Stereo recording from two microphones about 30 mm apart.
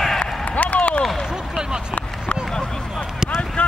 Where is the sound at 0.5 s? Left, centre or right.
Left.